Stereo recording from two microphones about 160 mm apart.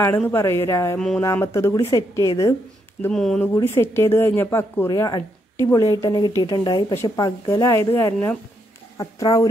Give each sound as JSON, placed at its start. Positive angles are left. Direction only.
{"t": 0.3, "sound": "speech", "side_deg": 15}
{"t": 0.9, "sound": "speech", "side_deg": 5}
{"t": 1.2, "sound": "a woman's voice", "side_deg": 20}
{"t": 3.1, "sound": "speech", "side_deg": 5}
{"t": 3.5, "sound": "a woman's voice", "side_deg": 15}